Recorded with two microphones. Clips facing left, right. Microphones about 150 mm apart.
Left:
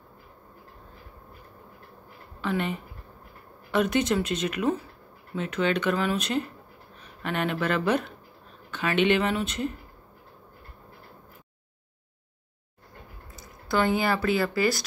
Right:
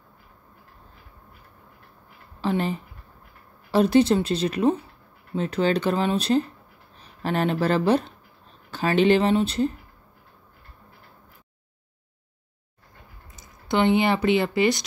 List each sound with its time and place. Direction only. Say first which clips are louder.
2.4 s speech: right 4 dB; 35° right (ahead or behind)
13.4 s a sound: right 3 dB; 20° right (ahead or behind)
14.4 s speech: right 3 dB; 20° right (ahead or behind)